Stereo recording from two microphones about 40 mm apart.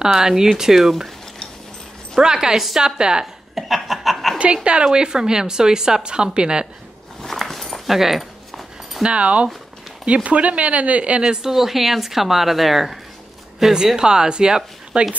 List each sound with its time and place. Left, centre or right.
0.1 s a woman's voice: centre
2.1 s a woman's voice: centre
3.5 s chuckle: centre
4.8 s a woman's voice: centre
7.2 s dog: centre
9.0 s speech: right
11.2 s a woman's voice: centre